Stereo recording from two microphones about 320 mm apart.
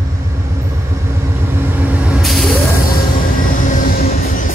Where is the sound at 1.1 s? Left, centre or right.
Centre.